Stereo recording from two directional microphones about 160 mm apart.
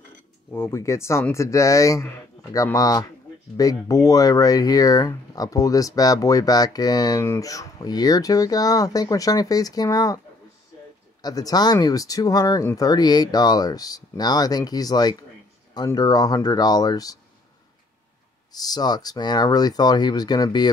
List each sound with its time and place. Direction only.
0.5 s speech: 15° left (ahead or behind)
11.2 s speech: 25° left (ahead or behind)
18.5 s speech: 25° left (ahead or behind)